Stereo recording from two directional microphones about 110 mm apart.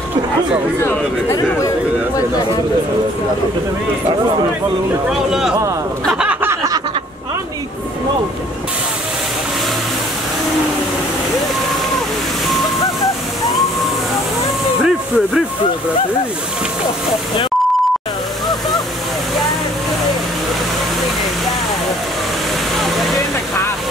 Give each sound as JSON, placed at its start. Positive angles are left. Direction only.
{"t": 0.8, "sound": "speech", "side_deg": 30}
{"t": 5.1, "sound": "speech", "side_deg": -5}
{"t": 6.4, "sound": "snicker", "side_deg": -25}
{"t": 14.8, "sound": "a sound", "side_deg": -5}